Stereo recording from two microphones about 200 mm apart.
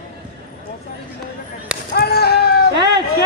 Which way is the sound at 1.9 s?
50° left (ahead or behind).